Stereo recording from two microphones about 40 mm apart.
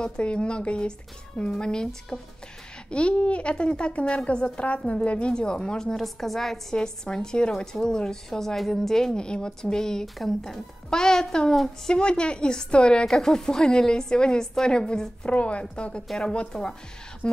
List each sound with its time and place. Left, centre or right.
0.0 s a woman's voice: left
2.9 s a woman's voice: left
5.3 s a woman's voice: left; by 6.6 s centre
6.7 s a woman's voice: centre
9.2 s a woman's voice: left
10.1 s a woman's voice: centre
10.9 s a woman's voice: centre
11.9 s a woman's voice: left
16.1 s a woman's voice: centre
17.2 s speech: left